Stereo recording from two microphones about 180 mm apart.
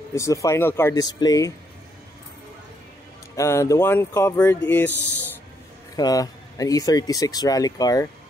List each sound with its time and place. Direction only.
0.1 s speech: 15° left (ahead or behind)
3.3 s speech: 15° left (ahead or behind)
5.9 s speech: 20° left (ahead or behind)